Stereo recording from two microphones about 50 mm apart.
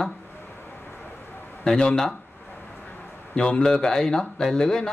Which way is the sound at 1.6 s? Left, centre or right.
Centre.